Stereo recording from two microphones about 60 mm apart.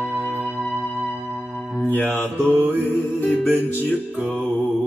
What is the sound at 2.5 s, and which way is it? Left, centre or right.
Music, right.